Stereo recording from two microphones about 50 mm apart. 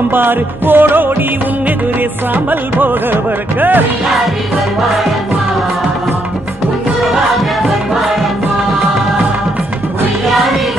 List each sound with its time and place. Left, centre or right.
0.1 s music: right
2.3 s music: right